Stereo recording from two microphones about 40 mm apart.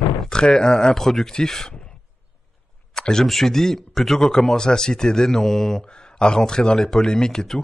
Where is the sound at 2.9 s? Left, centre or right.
Centre.